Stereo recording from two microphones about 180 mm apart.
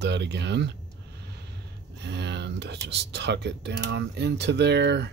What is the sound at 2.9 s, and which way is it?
Speech, 70° right (ahead or behind).